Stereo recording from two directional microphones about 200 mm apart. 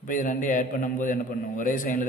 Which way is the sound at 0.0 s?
40° left (ahead or behind).